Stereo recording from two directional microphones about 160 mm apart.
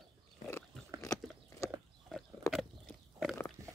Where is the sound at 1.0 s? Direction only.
20° left (ahead or behind).